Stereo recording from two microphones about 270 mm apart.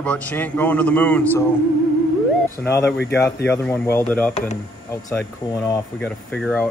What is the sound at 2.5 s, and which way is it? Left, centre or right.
Speech, centre.